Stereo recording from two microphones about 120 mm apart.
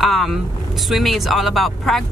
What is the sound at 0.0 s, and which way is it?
Vehicle, centre (ahead or behind).